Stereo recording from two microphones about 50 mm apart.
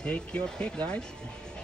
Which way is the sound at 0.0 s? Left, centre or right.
Centre.